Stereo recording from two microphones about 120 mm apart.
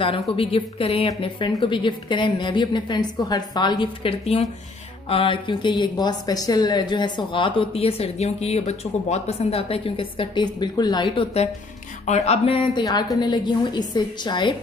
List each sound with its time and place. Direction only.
0.4 s a woman's voice: 50° left (ahead or behind)
12.1 s speech: 60° left (ahead or behind)
12.8 s a woman's voice: 35° left (ahead or behind)